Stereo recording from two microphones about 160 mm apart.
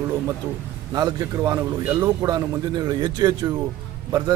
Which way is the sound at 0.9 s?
20° right (ahead or behind).